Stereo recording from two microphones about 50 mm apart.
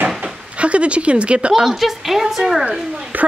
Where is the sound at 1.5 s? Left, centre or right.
Centre.